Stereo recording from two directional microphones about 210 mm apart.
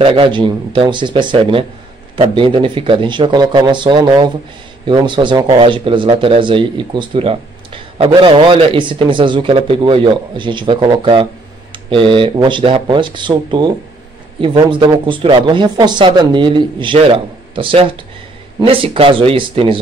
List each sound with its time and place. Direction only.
0.0 s speech: 25° right (ahead or behind)